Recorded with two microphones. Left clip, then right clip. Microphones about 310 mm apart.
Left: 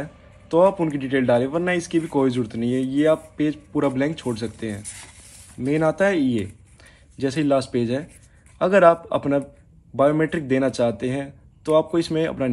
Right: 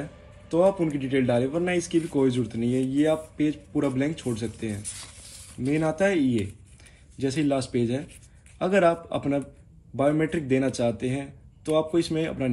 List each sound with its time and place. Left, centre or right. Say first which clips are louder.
0.0 s a man's voice: left 4 dB; left
4.8 s speech: left 1 dB; centre
5.6 s a man's voice: left 4 dB; left